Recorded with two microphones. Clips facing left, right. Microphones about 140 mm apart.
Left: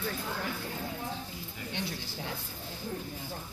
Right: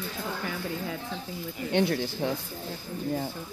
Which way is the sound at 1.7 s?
65° right (ahead or behind).